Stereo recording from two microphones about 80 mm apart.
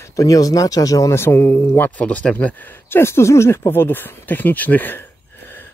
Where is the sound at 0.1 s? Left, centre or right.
Left.